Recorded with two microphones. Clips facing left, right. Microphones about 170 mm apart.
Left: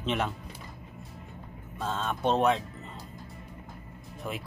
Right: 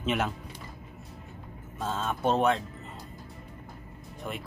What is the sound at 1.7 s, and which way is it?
Speech, 5° right (ahead or behind).